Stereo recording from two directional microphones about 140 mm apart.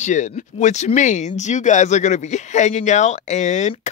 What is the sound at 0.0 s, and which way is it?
Speech, 60° left (ahead or behind).